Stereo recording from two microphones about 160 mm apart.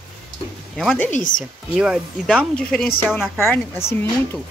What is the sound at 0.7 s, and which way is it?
Speech, 5° left (ahead or behind).